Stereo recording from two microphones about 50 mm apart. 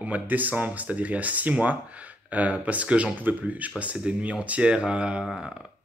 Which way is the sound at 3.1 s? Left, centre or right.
Right.